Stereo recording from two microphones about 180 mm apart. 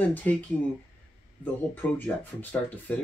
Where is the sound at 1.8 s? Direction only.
10° left (ahead or behind).